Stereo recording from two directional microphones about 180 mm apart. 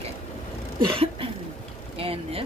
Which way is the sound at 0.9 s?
30° right (ahead or behind).